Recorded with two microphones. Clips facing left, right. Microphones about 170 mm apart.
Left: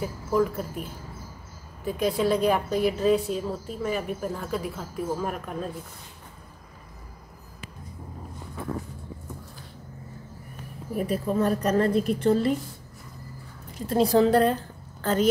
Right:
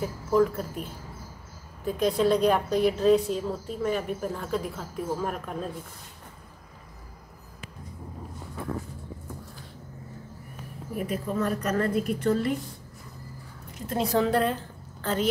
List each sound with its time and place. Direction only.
0.0 s a woman's voice: 5° left (ahead or behind)
1.9 s a woman's voice: 5° left (ahead or behind)
11.0 s a woman's voice: 35° left (ahead or behind)
13.7 s a woman's voice: 35° left (ahead or behind)